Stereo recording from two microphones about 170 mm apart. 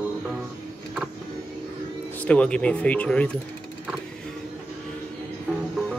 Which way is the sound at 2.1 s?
10° left (ahead or behind).